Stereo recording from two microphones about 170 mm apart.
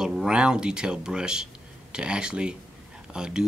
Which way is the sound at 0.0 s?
5° right (ahead or behind).